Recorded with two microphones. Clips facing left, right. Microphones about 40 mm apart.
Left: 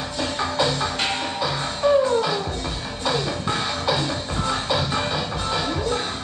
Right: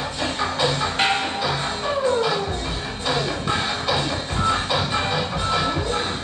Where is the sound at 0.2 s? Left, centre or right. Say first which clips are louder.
Even; centre.